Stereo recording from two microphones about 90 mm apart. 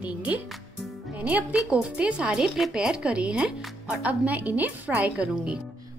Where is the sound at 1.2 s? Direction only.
15° right (ahead or behind).